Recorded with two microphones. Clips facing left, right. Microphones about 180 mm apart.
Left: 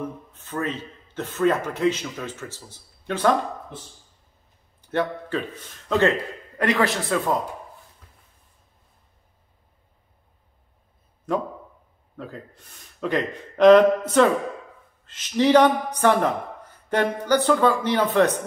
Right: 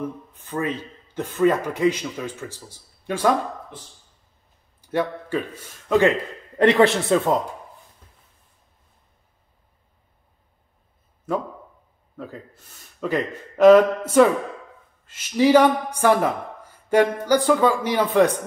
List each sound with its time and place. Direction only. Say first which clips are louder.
0.3 s a woman's voice: right 2 dB; 10° right (ahead or behind)
4.9 s a woman's voice: right 1 dB; 10° right (ahead or behind)
6.6 s speech: right 6 dB; 30° right (ahead or behind)
13.0 s a woman's voice: even; 5° right (ahead or behind)